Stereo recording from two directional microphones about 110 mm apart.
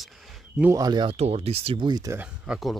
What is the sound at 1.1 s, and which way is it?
Speech, 70° right (ahead or behind).